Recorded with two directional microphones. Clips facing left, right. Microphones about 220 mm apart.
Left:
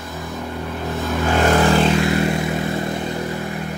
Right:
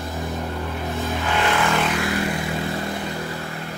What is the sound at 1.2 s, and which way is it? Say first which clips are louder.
Vehicle: left 7 dB; 45° left (ahead or behind).